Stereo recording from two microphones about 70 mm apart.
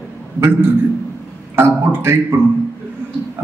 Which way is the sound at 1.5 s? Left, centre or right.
Right.